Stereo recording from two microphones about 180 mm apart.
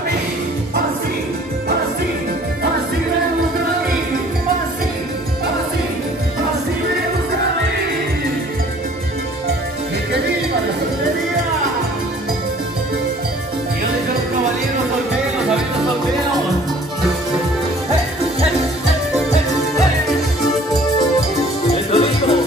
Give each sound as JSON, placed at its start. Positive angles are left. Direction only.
{"t": 21.9, "sound": "music", "side_deg": 30}